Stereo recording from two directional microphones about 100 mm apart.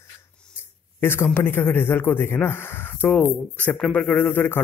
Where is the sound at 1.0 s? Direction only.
20° left (ahead or behind).